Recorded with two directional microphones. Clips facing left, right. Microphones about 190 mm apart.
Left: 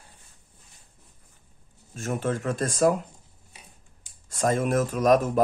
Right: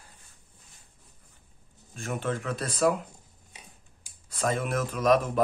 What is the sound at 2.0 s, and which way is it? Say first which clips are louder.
Speech: left 3 dB; 45° left (ahead or behind).